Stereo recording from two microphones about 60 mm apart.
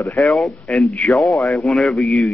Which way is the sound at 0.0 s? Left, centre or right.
Left.